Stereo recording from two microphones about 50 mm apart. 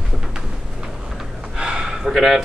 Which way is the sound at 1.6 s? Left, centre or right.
Centre.